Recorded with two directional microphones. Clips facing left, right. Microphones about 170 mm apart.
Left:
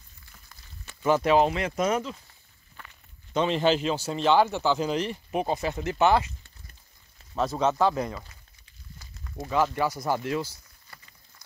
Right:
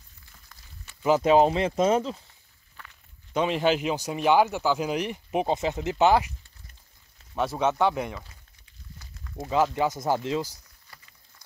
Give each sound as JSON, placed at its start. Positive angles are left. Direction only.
{"t": 1.2, "sound": "speech", "side_deg": -30}
{"t": 3.3, "sound": "speech", "side_deg": -10}
{"t": 7.3, "sound": "speech", "side_deg": -5}
{"t": 9.8, "sound": "speech", "side_deg": -20}